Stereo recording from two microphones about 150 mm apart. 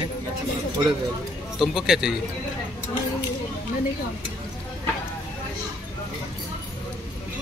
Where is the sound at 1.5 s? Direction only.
Centre (ahead or behind).